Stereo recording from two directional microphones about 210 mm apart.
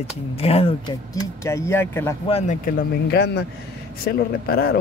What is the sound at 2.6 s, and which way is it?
Speech, 45° left (ahead or behind).